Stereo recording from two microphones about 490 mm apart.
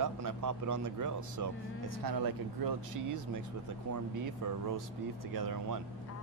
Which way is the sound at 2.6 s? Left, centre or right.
Right.